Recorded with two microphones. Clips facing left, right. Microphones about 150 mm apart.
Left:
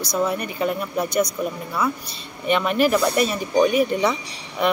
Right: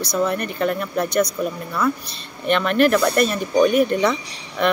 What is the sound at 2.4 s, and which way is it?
Speech, 10° left (ahead or behind).